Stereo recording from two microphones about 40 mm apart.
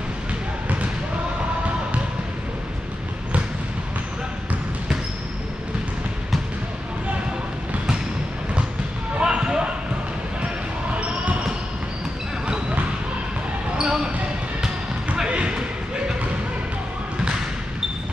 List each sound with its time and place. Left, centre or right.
9.2 s basketball bounce: right
13.7 s basketball bounce: centre
15.2 s basketball bounce: right